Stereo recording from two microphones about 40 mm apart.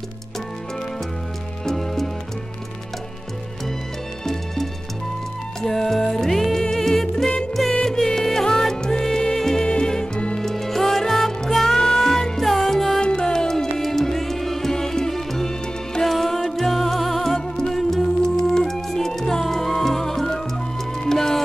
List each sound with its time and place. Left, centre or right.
1.6 s music: centre
5.6 s music: centre
10.4 s music: centre
13.0 s music: left